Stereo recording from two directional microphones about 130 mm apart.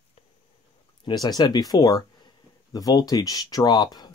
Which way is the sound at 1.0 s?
30° left (ahead or behind).